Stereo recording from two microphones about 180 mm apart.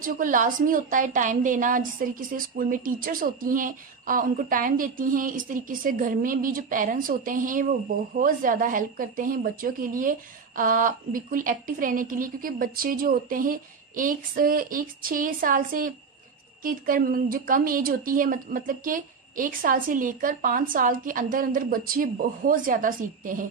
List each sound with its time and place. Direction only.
0.0 s a woman's voice: 50° right (ahead or behind)